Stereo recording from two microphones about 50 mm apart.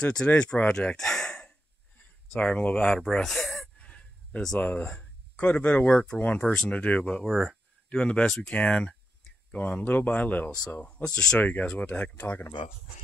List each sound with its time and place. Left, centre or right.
0.0 s speech: centre
3.0 s speech: centre
3.7 s a sound: left
4.6 s speech: left
4.8 s speech: centre
7.2 s speech: centre
7.9 s speech: left
9.8 s speech: left; by 11.3 s centre
11.3 s speech: left